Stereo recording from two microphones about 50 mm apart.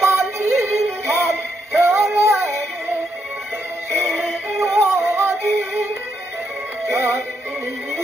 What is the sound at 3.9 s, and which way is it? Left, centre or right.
Music, right.